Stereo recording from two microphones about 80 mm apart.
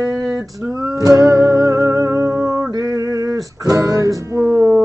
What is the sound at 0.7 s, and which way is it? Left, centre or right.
Music, right.